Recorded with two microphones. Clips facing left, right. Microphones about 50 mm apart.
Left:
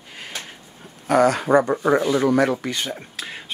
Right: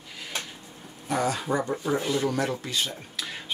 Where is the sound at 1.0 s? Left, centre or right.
Left.